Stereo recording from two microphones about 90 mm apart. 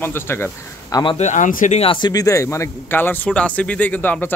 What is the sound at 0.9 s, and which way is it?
Speech, 45° left (ahead or behind).